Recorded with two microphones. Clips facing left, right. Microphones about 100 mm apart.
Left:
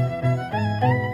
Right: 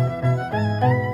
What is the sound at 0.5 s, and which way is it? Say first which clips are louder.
Music: right 2 dB; 20° right (ahead or behind).